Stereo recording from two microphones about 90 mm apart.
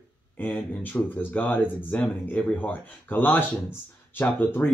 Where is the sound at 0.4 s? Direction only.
20° left (ahead or behind).